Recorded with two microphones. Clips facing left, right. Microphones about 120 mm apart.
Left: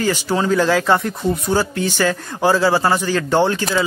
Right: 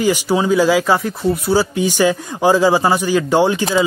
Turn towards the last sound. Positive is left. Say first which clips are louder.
# right 2 dB
turn(degrees=-15)  # may be behind; listen again after turning